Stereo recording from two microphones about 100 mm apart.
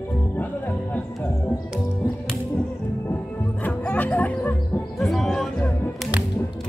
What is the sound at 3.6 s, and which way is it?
Music, 15° left (ahead or behind).